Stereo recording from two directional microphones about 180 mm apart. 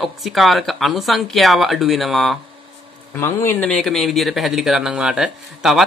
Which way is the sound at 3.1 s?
15° left (ahead or behind).